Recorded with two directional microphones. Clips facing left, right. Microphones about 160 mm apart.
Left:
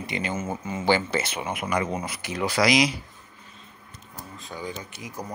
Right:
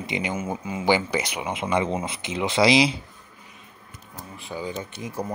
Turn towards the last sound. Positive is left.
turn(degrees=-30)  # may be behind; listen again after turning